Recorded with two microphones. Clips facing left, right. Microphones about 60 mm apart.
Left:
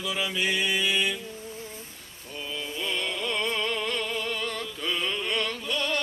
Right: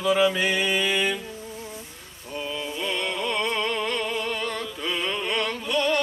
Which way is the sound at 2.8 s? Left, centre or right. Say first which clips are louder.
Right 3 dB; centre.